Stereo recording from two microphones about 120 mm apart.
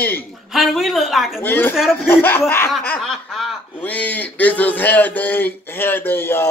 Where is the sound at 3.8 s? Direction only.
15° left (ahead or behind).